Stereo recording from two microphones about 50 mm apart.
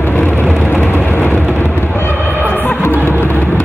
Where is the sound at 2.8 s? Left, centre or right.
Left.